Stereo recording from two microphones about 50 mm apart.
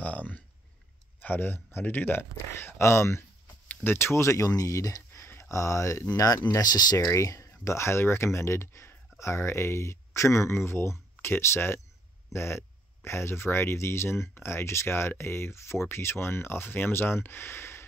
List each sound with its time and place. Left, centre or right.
0.0 s a sound: left
1.2 s speech: left
2.8 s speech: left
7.1 s speech: left
7.6 s speech: left
9.2 s speech: left